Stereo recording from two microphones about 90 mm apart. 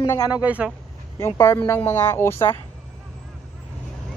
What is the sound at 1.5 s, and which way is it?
Speech, 25° left (ahead or behind).